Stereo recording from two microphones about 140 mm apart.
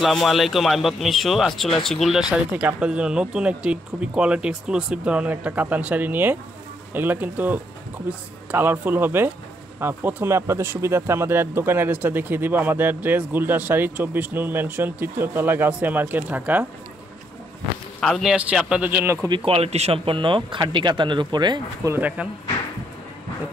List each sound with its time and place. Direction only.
0.0 s a man's voice: centre (ahead or behind)
18.0 s a man's voice: centre (ahead or behind)
19.2 s speech: 35° right (ahead or behind)
21.9 s speech: 10° right (ahead or behind)